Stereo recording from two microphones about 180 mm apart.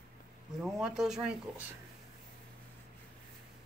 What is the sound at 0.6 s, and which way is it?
Speech, centre (ahead or behind).